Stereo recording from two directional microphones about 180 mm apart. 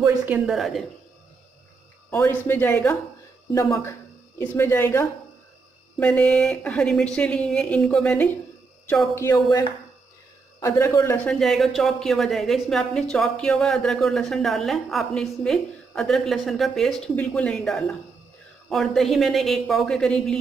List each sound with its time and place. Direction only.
0.0 s speech: 10° right (ahead or behind)
2.0 s speech: 15° left (ahead or behind)
11.2 s speech: centre (ahead or behind)